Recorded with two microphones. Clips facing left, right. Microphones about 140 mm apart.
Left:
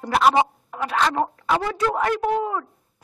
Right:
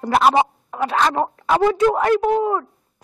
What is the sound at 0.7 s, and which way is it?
Speech, 35° right (ahead or behind).